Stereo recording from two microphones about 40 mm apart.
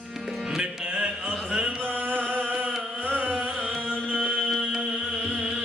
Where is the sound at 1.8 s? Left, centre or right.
Right.